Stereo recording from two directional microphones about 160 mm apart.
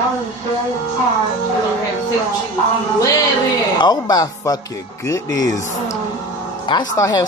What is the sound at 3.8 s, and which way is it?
Speech, 25° left (ahead or behind).